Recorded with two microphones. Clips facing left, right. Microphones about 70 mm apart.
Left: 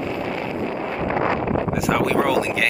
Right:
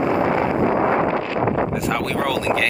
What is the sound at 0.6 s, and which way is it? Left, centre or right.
Wind noise, right.